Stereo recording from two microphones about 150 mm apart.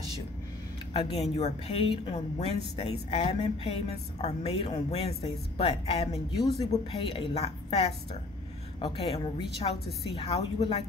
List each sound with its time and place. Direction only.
0.9 s speech: 40° left (ahead or behind)
6.3 s speech: 25° left (ahead or behind)
6.7 s speech: 40° left (ahead or behind)